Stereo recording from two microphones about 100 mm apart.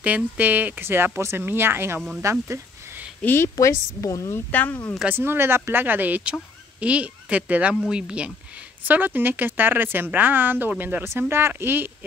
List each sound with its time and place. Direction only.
0.0 s a woman's voice: 15° right (ahead or behind)
2.4 s a sound: 25° right (ahead or behind)
3.2 s a woman's voice: 20° left (ahead or behind)
3.4 s a woman's voice: 35° left (ahead or behind)
4.5 s speech: 20° left (ahead or behind)
5.1 s a woman's voice: 20° right (ahead or behind)